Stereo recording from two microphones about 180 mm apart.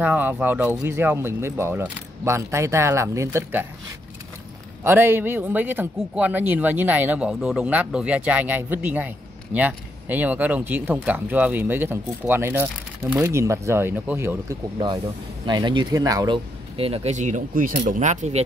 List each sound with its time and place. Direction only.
0.0 s speech: 10° right (ahead or behind)
4.8 s speech: 10° right (ahead or behind)
15.4 s speech: 25° right (ahead or behind); by 18.4 s 40° right (ahead or behind)